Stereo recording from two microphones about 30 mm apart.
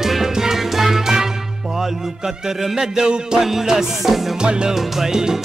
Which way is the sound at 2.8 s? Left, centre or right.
Right.